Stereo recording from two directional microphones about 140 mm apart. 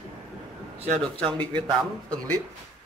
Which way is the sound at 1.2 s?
10° left (ahead or behind).